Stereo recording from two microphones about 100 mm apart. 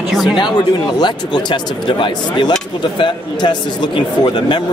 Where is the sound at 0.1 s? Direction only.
Centre (ahead or behind).